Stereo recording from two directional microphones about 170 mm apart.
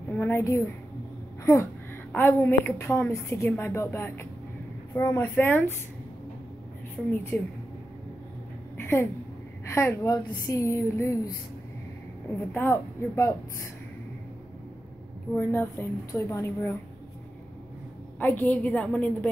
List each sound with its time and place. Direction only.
0.2 s a woman's voice: 15° left (ahead or behind)
7.1 s a woman's voice: 10° left (ahead or behind)
8.7 s a sound: 15° left (ahead or behind)
9.7 s a woman's voice: 15° left (ahead or behind)
12.5 s a woman's voice: 15° left (ahead or behind)
15.3 s a woman's voice: 15° left (ahead or behind)
18.2 s a woman's voice: 10° left (ahead or behind)